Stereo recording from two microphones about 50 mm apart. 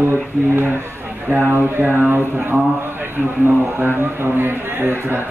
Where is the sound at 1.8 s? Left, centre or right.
Right.